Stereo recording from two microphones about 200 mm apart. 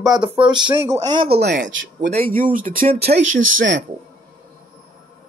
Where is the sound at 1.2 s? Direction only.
55° right (ahead or behind).